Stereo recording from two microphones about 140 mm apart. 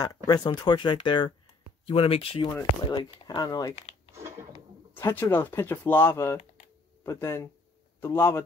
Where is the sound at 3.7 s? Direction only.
50° left (ahead or behind).